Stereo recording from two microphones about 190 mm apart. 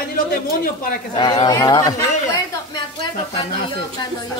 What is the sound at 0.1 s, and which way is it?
Speech, 50° left (ahead or behind).